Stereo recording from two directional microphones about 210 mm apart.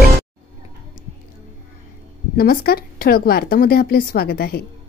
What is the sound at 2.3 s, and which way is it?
A woman's voice, 45° left (ahead or behind).